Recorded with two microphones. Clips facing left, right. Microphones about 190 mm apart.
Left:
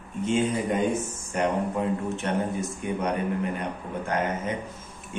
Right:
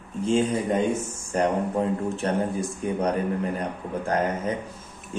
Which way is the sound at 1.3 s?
35° right (ahead or behind).